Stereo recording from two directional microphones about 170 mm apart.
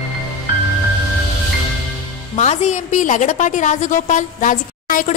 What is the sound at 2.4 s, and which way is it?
A woman's voice, 40° left (ahead or behind).